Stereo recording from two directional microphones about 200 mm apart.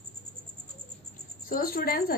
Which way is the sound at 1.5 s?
45° left (ahead or behind).